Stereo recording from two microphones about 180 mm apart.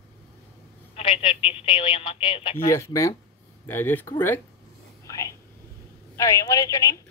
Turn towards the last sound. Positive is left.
turn(degrees=20)  # may be behind; listen again after turning